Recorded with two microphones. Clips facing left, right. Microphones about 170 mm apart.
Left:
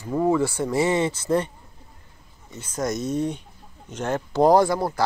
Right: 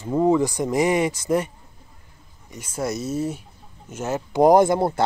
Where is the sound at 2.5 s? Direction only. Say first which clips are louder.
Even; 10° right (ahead or behind).